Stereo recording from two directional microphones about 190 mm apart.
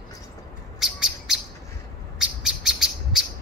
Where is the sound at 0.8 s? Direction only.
5° right (ahead or behind).